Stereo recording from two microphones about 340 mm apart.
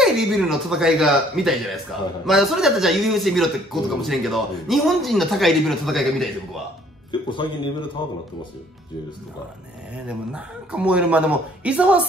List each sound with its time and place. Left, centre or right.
0.0 s speech: centre
7.1 s music: centre
10.0 s speech: centre